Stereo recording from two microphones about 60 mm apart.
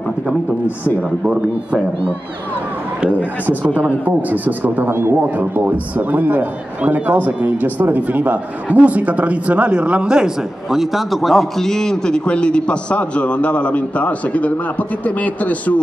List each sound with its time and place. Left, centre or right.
3.4 s a man's voice: right; by 15.7 s left